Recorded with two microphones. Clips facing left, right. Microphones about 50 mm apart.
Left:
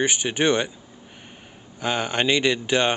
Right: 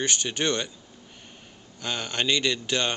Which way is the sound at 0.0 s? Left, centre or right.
Centre.